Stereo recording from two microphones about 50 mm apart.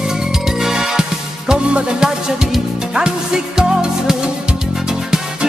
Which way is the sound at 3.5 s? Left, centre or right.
Centre.